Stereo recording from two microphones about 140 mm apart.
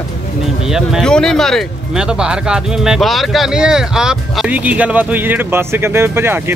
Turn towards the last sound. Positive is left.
turn(degrees=-15)  # may be behind; listen again after turning